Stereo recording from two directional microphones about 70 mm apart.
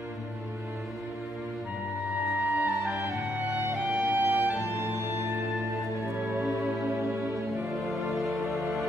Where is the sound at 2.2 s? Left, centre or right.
Right.